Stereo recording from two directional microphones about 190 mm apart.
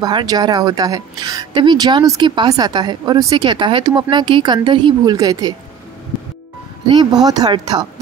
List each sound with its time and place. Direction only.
0.0 s speech: 20° right (ahead or behind)
6.9 s speech: 20° right (ahead or behind)